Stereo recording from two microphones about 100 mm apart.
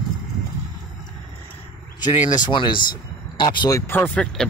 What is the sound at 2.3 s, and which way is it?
Speech, 50° left (ahead or behind).